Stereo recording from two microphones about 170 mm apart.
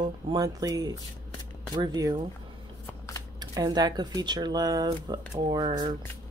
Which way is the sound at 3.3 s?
25° right (ahead or behind).